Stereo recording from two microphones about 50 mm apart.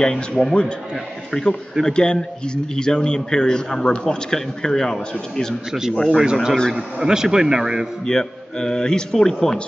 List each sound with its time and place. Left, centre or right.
0.0 s speech: centre
5.7 s a man's voice: centre
8.0 s speech: centre